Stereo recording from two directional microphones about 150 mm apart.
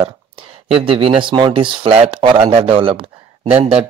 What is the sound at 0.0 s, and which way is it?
Speech, 35° right (ahead or behind).